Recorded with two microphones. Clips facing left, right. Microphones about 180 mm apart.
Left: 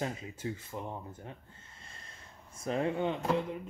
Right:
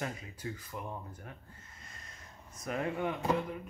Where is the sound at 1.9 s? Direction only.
30° left (ahead or behind).